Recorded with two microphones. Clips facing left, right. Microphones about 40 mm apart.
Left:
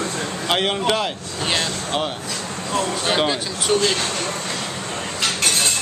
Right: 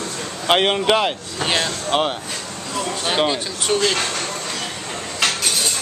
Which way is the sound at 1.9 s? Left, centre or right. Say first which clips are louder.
Right 6 dB; right.